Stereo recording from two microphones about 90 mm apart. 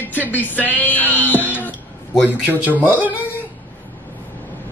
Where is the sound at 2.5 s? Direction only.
10° right (ahead or behind).